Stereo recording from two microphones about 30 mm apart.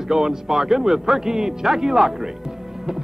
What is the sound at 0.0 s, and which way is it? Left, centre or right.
Speech, centre.